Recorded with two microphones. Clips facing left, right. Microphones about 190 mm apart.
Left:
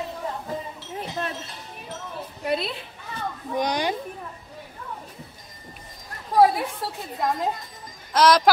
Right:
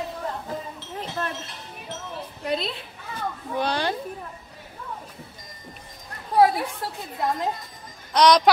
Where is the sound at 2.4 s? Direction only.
5° left (ahead or behind).